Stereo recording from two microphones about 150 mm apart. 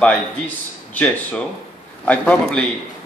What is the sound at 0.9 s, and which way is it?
Speech, 10° left (ahead or behind).